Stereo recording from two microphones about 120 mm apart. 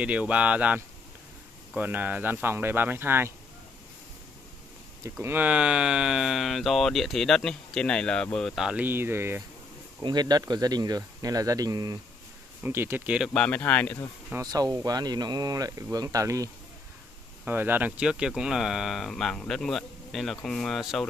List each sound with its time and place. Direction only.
0.0 s speech: 10° right (ahead or behind)
5.2 s speech: 15° right (ahead or behind)
8.7 s speech: 15° right (ahead or behind)
10.0 s speech: 35° right (ahead or behind)
12.6 s speech: 20° right (ahead or behind)
13.3 s speech: 10° left (ahead or behind)
14.4 s speech: 30° right (ahead or behind)
17.5 s speech: 15° right (ahead or behind); by 21.0 s centre (ahead or behind)